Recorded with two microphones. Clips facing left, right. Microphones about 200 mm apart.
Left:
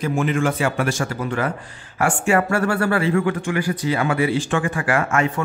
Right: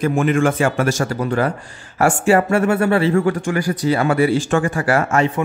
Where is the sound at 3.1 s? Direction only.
40° right (ahead or behind).